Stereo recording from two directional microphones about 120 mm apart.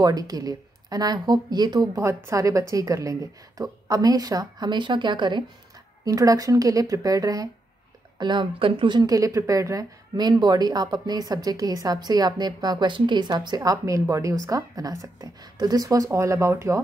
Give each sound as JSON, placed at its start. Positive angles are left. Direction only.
{"t": 0.0, "sound": "speech", "side_deg": -30}
{"t": 6.0, "sound": "a woman's voice", "side_deg": -30}
{"t": 8.2, "sound": "speech", "side_deg": -40}